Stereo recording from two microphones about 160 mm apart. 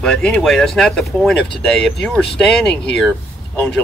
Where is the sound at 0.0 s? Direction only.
5° left (ahead or behind).